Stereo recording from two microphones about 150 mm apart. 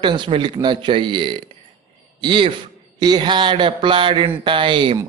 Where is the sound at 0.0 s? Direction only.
30° right (ahead or behind).